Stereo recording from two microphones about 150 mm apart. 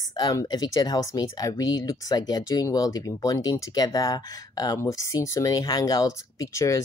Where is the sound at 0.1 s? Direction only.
25° left (ahead or behind).